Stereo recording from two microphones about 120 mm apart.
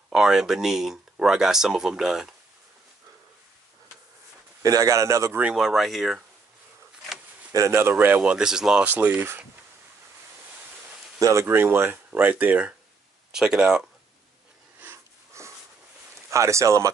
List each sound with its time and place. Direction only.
0.1 s speech: 5° right (ahead or behind)
4.6 s speech: 25° right (ahead or behind)
5.4 s speech: 5° right (ahead or behind)
7.5 s speech: 25° right (ahead or behind)
11.1 s speech: 25° right (ahead or behind); by 13.8 s 5° right (ahead or behind)
14.8 s a sound: 20° right (ahead or behind)
16.3 s speech: 25° right (ahead or behind)